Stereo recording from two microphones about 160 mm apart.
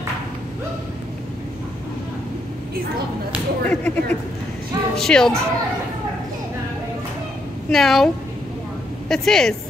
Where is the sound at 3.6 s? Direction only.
10° left (ahead or behind).